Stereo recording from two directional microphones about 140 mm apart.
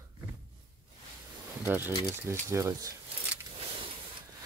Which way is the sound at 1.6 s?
15° right (ahead or behind).